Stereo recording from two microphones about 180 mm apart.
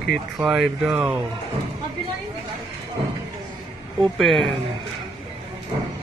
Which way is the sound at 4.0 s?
Centre (ahead or behind).